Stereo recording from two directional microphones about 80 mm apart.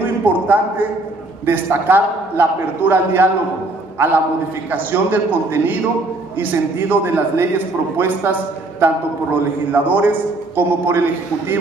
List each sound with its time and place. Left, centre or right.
0.0 s a man's voice: right
4.6 s a man's voice: right